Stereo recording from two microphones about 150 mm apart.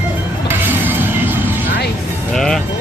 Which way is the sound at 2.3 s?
5° left (ahead or behind).